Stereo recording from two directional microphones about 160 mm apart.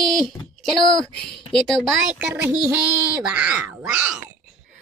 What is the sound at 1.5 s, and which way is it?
Speech, 5° left (ahead or behind).